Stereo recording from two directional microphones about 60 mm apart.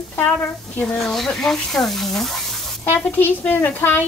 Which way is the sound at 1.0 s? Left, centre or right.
Centre.